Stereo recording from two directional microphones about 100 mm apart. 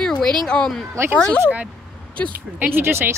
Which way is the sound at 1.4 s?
15° right (ahead or behind).